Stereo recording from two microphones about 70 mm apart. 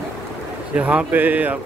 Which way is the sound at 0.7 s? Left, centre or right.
Right.